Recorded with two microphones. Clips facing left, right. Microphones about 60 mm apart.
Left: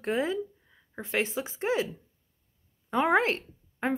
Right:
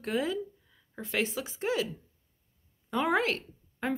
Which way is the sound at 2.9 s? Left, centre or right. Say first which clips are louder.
Left 3 dB; left.